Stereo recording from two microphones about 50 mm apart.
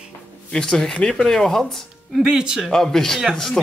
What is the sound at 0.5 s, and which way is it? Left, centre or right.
Speech, centre.